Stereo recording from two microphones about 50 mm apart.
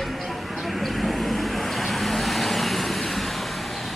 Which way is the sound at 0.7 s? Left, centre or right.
Centre.